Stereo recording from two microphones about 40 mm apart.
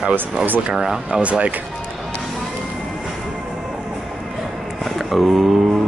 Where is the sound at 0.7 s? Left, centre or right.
Centre.